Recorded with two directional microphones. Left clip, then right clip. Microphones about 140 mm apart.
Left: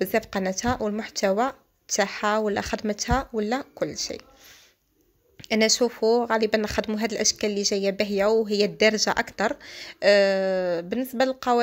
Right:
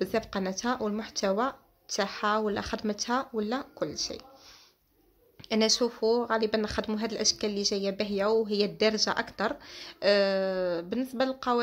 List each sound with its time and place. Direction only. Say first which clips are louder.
0.0 s speech: left 5 dB; 25° left (ahead or behind)
5.4 s speech: left 5 dB; 25° left (ahead or behind)